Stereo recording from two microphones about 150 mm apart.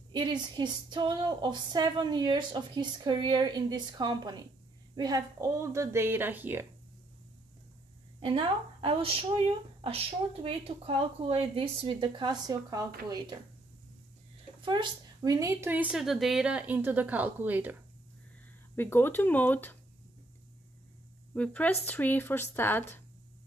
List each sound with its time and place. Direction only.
0.1 s speech: 30° right (ahead or behind); by 6.6 s 15° right (ahead or behind)
8.2 s speech: 35° right (ahead or behind)
14.6 s a woman's voice: 30° right (ahead or behind); by 17.7 s 10° right (ahead or behind)
18.8 s speech: 15° left (ahead or behind)
21.3 s speech: 10° left (ahead or behind)